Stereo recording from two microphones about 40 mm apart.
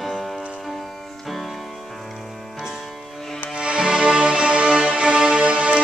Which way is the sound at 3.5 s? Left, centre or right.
Right.